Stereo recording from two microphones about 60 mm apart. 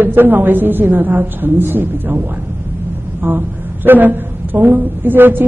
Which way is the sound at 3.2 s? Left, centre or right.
Right.